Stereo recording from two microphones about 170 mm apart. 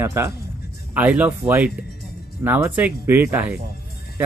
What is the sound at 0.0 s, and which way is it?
A man's voice, 15° right (ahead or behind).